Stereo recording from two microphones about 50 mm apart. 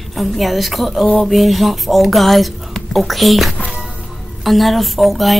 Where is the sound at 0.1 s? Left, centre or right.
Centre.